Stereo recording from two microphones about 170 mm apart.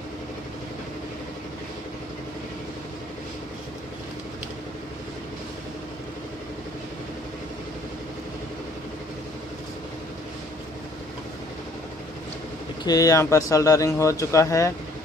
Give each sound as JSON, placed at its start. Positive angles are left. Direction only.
{"t": 12.8, "sound": "speech", "side_deg": 20}